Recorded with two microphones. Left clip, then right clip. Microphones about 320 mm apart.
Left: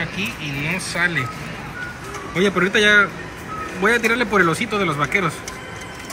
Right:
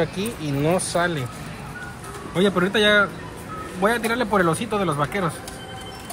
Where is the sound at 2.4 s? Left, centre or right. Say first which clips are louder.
Left 2 dB; centre.